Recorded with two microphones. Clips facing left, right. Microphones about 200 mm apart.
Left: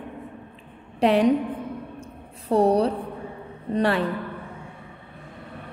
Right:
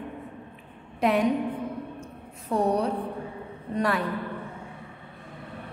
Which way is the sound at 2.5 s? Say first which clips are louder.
Left 5 dB; 35° left (ahead or behind).